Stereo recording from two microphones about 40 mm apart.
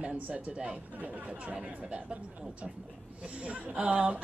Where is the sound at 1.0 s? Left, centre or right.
Right.